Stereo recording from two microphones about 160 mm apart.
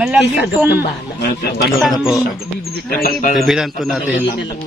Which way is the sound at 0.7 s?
85° left.